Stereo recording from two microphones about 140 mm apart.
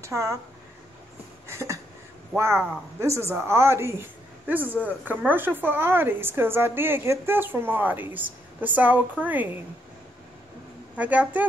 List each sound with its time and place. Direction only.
0.0 s speech: 20° right (ahead or behind)
1.5 s a sound: 20° right (ahead or behind)
2.3 s a woman's voice: 20° right (ahead or behind)
11.0 s a woman's voice: 10° right (ahead or behind)